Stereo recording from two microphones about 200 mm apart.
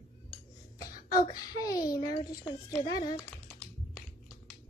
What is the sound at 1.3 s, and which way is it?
A child's voice, 15° left (ahead or behind).